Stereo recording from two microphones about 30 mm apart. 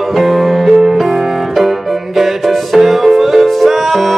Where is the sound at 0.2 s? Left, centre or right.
Centre.